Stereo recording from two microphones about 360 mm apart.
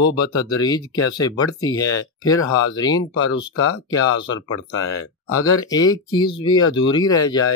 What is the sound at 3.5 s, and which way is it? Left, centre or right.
Speech, left.